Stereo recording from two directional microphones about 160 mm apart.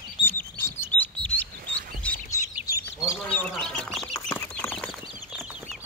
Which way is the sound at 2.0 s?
10° left (ahead or behind).